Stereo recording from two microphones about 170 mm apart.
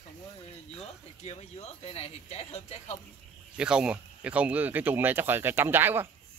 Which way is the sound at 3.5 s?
5° right (ahead or behind).